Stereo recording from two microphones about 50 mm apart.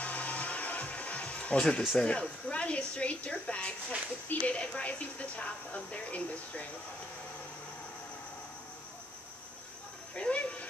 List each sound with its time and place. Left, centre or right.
0.0 s music: left
2.0 s speech: centre
10.1 s a sound: left